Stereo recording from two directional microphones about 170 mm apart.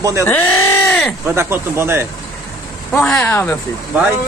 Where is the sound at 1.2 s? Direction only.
15° right (ahead or behind).